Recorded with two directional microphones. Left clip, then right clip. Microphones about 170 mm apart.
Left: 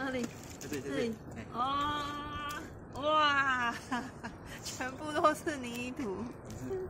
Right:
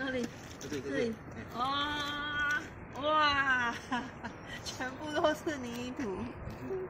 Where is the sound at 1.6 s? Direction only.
5° right (ahead or behind).